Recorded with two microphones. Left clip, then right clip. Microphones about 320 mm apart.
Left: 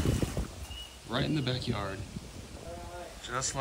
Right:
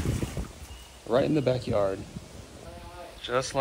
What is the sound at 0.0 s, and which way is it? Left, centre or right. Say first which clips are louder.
Boat: left 1 dB; centre.